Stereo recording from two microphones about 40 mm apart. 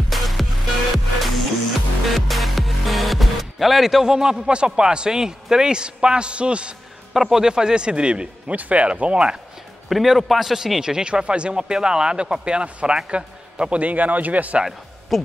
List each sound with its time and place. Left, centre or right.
0.1 s music: centre
2.1 s speech: centre; by 6.7 s right
7.2 s a man's voice: centre
7.4 s speech: centre
8.5 s a man's voice: right
9.8 s a man's voice: centre
10.8 s a man's voice: centre; by 14.6 s right
15.1 s a man's voice: centre